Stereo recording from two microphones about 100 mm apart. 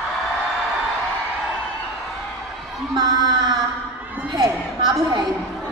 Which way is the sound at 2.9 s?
45° right (ahead or behind).